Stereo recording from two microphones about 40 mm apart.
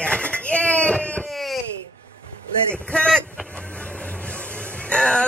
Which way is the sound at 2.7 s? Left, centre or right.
Left.